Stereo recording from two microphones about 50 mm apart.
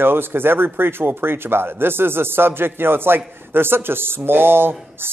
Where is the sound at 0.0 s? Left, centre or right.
Right.